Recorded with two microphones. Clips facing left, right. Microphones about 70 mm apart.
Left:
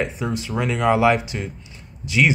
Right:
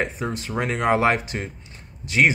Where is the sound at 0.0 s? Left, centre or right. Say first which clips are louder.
Left 2 dB; right.